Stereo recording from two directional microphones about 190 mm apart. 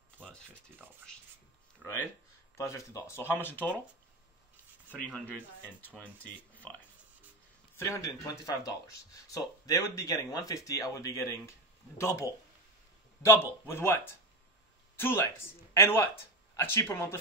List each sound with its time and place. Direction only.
1.8 s speech: 10° left (ahead or behind)
4.8 s speech: 5° left (ahead or behind)
7.7 s speech: 15° left (ahead or behind)
15.0 s speech: 10° left (ahead or behind)